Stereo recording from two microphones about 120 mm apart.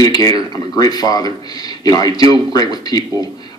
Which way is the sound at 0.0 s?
30° left (ahead or behind).